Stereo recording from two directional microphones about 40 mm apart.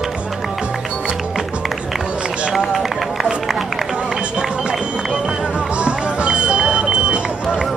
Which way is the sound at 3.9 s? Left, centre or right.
Right.